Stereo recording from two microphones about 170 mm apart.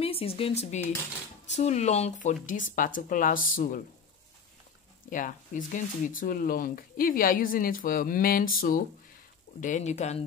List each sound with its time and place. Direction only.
0.0 s speech: 35° left (ahead or behind); by 3.8 s 50° left (ahead or behind)
5.1 s speech: 50° left (ahead or behind)